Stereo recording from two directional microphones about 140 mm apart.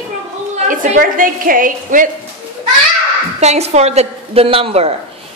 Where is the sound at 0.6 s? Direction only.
70° right (ahead or behind).